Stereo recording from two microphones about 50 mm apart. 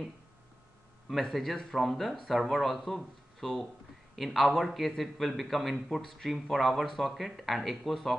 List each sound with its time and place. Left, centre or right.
1.0 s a man's voice: centre